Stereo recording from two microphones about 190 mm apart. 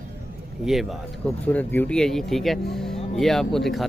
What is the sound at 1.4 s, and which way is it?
Speech, 10° left (ahead or behind).